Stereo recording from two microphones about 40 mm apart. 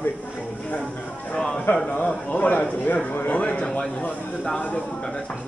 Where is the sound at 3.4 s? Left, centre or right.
Left.